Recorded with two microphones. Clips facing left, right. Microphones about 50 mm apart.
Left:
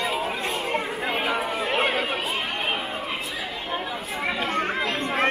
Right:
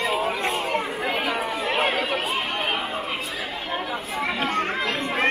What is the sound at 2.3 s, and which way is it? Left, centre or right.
Chatter, right.